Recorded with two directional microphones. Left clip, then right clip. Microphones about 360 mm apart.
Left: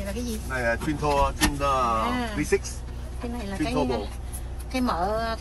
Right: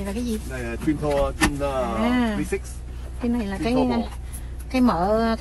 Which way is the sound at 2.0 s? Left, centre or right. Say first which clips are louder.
Right 4 dB; centre.